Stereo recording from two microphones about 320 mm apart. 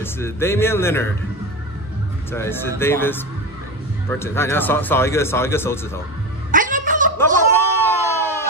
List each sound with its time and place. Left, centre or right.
0.0 s speech: centre
2.3 s speech: centre
6.5 s music: right
7.5 s a sound: centre